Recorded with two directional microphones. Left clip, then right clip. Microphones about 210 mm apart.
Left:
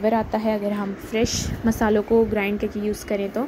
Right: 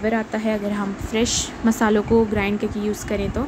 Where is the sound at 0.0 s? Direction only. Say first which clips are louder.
Left 1 dB; 10° left (ahead or behind).